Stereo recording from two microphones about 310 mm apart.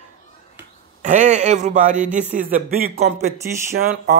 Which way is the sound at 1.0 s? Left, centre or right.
Right.